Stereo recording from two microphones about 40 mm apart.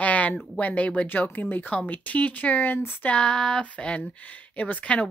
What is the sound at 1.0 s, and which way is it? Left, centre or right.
Speech, left.